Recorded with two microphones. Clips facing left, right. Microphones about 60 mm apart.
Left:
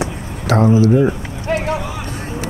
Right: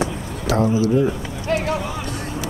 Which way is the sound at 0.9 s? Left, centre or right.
Left.